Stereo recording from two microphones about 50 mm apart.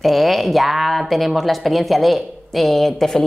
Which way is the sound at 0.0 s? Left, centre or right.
Centre.